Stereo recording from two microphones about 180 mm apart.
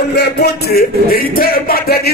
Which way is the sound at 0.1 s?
65° left (ahead or behind).